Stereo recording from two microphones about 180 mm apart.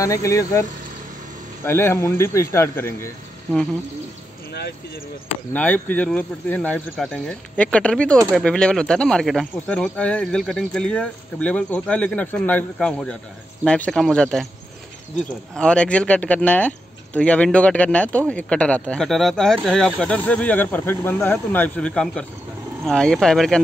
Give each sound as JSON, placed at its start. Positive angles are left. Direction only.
{"t": 0.0, "sound": "speech", "side_deg": 20}
{"t": 4.5, "sound": "speech", "side_deg": 65}
{"t": 5.5, "sound": "speech", "side_deg": 10}